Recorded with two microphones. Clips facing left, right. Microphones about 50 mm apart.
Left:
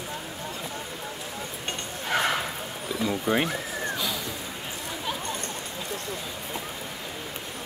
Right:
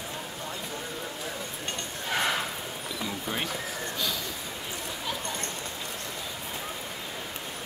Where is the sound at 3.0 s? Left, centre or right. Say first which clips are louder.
Left 9 dB; left.